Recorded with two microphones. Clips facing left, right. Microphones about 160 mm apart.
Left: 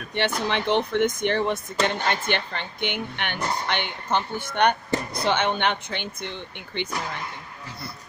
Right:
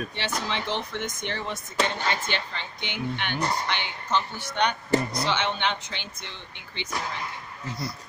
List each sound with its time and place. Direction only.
0.1 s a woman's voice: 60° left (ahead or behind)